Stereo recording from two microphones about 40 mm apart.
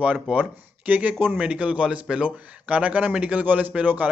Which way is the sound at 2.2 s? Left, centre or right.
Right.